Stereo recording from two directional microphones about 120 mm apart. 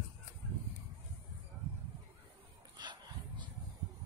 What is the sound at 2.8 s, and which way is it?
Dog, 40° right (ahead or behind).